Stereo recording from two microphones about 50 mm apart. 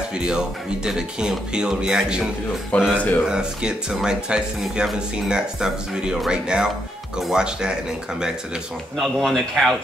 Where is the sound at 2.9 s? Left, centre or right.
Left.